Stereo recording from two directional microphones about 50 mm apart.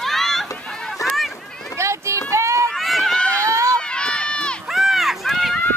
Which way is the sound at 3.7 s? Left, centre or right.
Centre.